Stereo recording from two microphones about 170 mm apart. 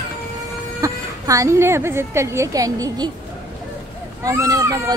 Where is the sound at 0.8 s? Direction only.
20° right (ahead or behind).